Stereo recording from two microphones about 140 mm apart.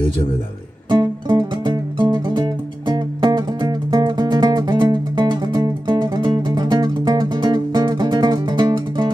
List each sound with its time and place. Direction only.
0.8 s music: 30° right (ahead or behind)